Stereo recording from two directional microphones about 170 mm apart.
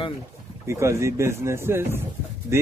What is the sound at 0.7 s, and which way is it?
Speech, 15° right (ahead or behind).